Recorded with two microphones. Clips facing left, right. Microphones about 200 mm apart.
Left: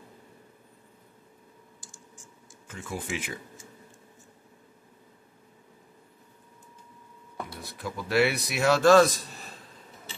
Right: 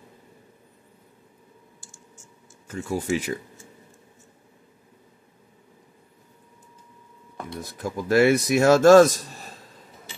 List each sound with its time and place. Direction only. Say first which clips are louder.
2.7 s speech: right 9 dB; 40° right (ahead or behind)
7.6 s a man's voice: right 8 dB; 45° right (ahead or behind)